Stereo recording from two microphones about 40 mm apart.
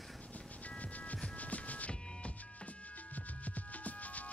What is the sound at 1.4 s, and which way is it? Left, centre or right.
Music, left.